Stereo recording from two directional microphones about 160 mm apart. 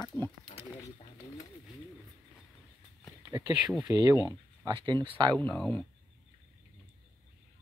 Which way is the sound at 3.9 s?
20° right (ahead or behind).